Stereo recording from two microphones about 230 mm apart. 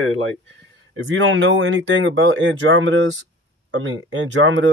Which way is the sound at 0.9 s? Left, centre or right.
Right.